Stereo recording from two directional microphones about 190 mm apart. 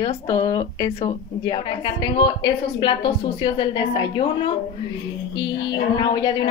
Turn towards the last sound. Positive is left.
turn(degrees=20)  # may be behind; listen again after turning